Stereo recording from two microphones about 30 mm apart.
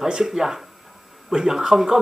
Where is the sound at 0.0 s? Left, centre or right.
Centre.